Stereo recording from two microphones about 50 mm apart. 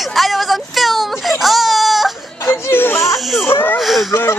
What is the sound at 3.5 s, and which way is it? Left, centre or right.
Speech, left.